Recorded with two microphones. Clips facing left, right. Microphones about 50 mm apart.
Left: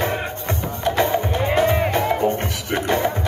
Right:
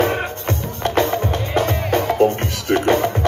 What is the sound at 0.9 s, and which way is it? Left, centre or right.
Music, left.